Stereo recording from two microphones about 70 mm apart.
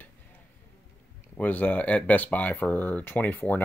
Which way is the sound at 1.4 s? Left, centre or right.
Left.